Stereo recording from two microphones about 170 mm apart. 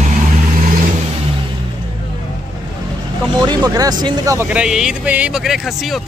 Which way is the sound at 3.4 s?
20° right (ahead or behind).